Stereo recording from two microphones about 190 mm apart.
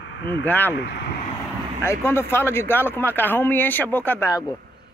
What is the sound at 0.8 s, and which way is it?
Speech, 65° left (ahead or behind).